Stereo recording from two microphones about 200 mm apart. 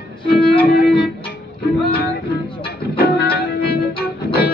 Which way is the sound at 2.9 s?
50° left (ahead or behind).